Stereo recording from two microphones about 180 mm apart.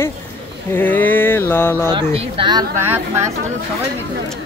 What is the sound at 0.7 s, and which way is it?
Mantra, 10° left (ahead or behind).